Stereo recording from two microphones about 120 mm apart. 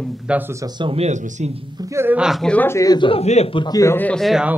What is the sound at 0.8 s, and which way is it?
Speech, 45° right (ahead or behind).